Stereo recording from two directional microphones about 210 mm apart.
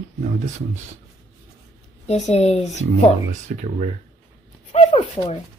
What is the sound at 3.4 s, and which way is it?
Speech, 35° right (ahead or behind).